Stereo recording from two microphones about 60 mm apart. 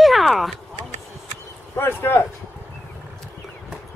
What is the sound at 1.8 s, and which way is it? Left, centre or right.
Speech, left.